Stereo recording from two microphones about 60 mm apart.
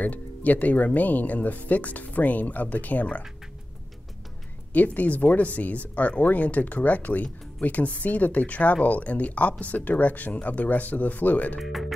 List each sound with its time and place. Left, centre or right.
0.0 s speech: left
4.7 s speech: left
11.6 s speech: centre